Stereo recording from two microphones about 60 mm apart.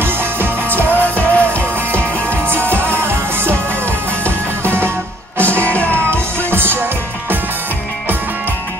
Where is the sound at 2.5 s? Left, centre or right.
Right.